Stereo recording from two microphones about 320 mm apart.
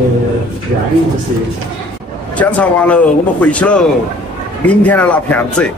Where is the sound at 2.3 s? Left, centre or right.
Centre.